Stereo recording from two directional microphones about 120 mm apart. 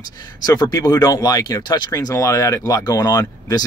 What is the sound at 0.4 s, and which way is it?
Speech, 35° left (ahead or behind).